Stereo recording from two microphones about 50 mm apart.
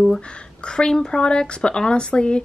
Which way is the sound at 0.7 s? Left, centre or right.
Centre.